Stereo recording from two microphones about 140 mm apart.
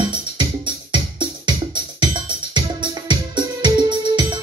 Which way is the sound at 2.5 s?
35° right (ahead or behind).